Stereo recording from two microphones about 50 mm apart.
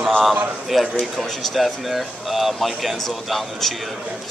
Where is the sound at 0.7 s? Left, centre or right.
Centre.